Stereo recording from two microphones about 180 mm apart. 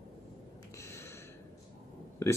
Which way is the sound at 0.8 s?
15° left (ahead or behind).